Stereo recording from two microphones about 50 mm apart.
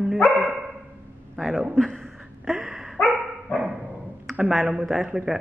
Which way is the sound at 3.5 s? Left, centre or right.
Left.